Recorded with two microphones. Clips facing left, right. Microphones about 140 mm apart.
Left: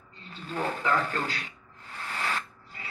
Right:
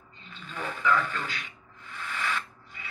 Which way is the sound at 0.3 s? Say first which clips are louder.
Left 5 dB; 35° left (ahead or behind).